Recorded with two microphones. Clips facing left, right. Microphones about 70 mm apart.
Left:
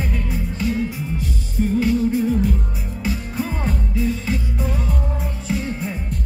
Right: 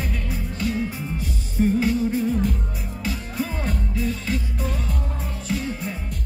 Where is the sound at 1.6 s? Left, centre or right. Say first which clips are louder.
Right 1 dB; centre.